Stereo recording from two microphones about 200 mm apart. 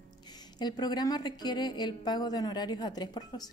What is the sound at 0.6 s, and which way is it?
A woman's voice, 20° left (ahead or behind).